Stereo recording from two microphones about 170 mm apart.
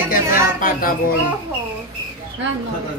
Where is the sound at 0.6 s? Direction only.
60° left (ahead or behind).